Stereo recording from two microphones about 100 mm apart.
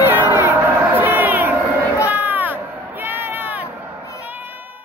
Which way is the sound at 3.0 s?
20° right (ahead or behind).